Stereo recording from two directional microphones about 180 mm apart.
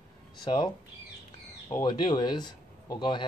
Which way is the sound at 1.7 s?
20° left (ahead or behind).